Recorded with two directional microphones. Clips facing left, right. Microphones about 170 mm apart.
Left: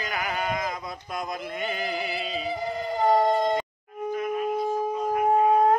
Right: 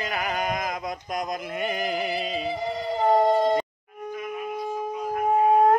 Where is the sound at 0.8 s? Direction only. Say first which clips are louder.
Right 3 dB; 15° right (ahead or behind).